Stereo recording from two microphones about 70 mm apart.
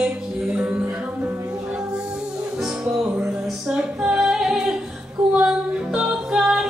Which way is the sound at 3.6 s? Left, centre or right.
Centre.